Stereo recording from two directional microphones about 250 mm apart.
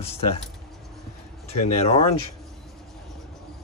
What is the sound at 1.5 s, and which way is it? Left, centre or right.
Speech, left.